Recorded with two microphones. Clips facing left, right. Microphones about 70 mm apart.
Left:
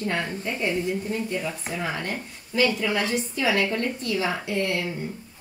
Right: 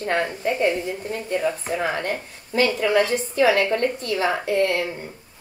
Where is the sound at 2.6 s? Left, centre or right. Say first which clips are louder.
Right 4 dB; right.